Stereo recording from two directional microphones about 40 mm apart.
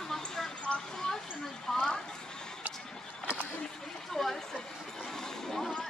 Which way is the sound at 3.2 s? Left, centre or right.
Right.